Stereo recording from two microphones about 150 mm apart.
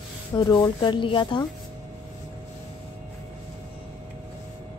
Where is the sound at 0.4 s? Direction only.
30° left (ahead or behind).